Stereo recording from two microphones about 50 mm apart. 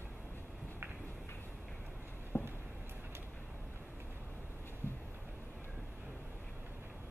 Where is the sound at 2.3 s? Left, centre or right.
Left.